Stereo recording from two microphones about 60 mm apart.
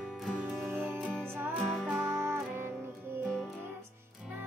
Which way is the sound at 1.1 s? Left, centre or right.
Centre.